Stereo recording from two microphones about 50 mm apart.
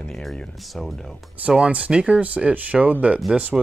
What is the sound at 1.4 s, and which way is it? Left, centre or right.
Speech, right.